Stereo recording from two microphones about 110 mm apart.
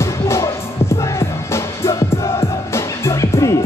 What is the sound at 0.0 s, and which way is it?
Music, 25° left (ahead or behind).